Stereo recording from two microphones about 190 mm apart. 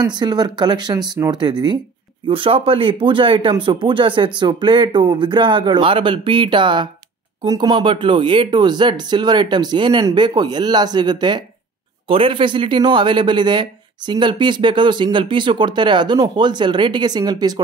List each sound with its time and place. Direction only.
0.0 s speech: 20° right (ahead or behind)